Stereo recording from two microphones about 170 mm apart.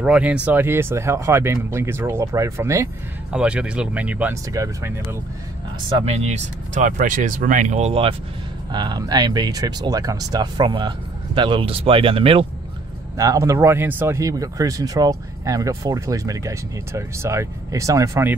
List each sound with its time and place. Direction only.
0.0 s speech: 5° right (ahead or behind)
3.3 s speech: 5° right (ahead or behind)
5.9 s speech: 35° right (ahead or behind)
13.2 s speech: 20° right (ahead or behind)